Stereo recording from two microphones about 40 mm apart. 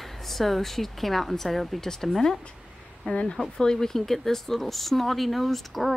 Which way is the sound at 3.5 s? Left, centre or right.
Centre.